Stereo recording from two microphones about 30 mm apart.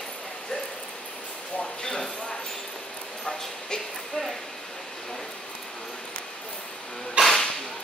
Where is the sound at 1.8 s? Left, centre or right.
Left.